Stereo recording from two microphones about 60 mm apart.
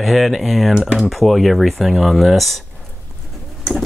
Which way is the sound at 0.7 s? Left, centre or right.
Centre.